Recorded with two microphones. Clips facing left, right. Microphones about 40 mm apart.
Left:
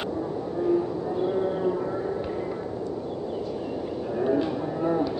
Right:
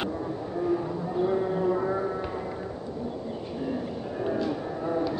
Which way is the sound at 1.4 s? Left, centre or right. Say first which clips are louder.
Left 1 dB; centre.